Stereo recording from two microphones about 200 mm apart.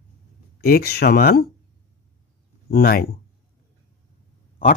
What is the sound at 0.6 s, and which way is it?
Speech, 50° left (ahead or behind).